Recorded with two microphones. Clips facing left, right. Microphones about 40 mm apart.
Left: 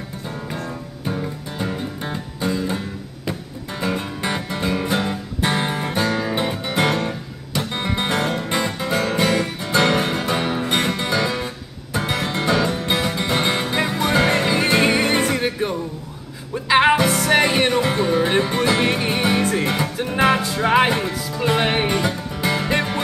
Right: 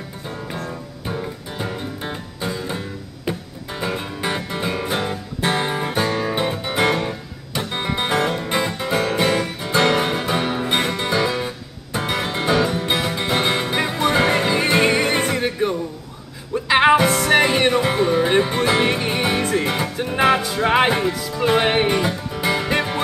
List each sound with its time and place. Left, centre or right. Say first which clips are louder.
0.5 s music: even; centre